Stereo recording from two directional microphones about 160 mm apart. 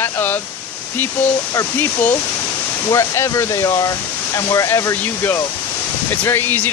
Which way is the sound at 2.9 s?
20° left (ahead or behind).